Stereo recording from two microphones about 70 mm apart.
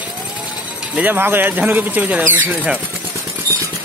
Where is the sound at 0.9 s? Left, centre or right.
Right.